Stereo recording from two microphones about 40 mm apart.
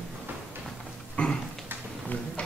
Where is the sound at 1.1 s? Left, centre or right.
Left.